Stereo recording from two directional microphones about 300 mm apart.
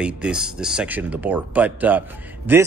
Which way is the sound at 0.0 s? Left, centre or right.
Centre.